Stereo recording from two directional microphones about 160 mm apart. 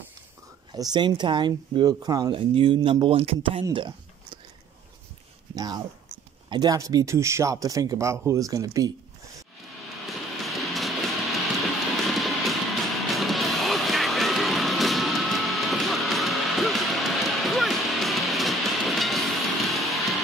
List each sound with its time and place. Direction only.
0.7 s speech: 25° right (ahead or behind)
3.7 s a sound: 30° right (ahead or behind)
5.5 s speech: 25° right (ahead or behind)
10.0 s music: centre (ahead or behind)
12.0 s train: centre (ahead or behind)
13.1 s music: centre (ahead or behind)